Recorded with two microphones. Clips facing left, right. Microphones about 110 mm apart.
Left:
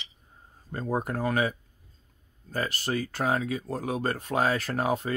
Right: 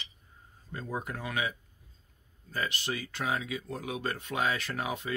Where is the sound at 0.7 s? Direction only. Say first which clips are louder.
Left 7 dB; 45° left (ahead or behind).